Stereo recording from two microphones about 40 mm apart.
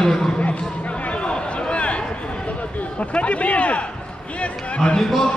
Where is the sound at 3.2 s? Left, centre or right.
Left.